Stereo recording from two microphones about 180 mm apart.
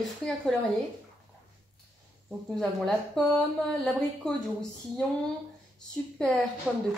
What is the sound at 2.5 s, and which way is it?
A woman's voice, centre (ahead or behind).